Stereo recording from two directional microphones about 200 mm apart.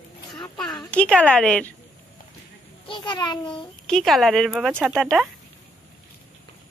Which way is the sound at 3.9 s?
Centre (ahead or behind).